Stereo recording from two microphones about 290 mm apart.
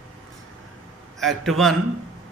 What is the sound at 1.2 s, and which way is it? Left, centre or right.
Speech, centre.